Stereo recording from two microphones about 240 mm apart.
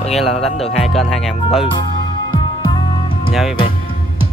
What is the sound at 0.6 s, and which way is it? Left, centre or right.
Music, left.